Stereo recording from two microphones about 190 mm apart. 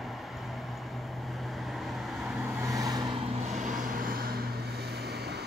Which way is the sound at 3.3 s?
35° right (ahead or behind).